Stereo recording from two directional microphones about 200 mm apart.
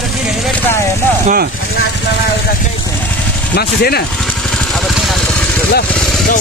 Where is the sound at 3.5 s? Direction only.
50° left (ahead or behind).